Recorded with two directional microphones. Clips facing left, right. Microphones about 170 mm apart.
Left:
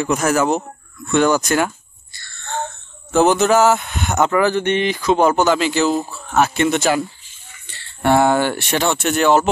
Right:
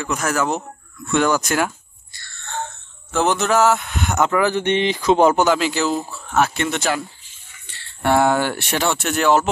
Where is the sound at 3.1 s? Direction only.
5° left (ahead or behind); by 5.5 s 15° right (ahead or behind).